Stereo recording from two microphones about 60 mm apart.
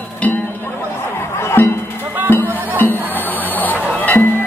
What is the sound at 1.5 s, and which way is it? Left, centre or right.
Music, left.